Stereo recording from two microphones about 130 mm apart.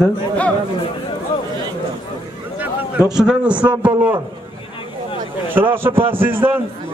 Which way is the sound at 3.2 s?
5° right (ahead or behind).